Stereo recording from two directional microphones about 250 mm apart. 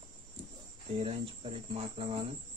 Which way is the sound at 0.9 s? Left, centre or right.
Right.